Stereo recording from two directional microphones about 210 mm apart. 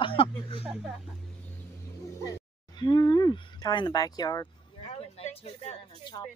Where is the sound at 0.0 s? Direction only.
25° left (ahead or behind).